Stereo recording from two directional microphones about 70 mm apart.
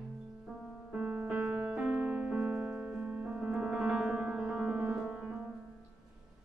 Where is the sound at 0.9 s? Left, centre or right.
Centre.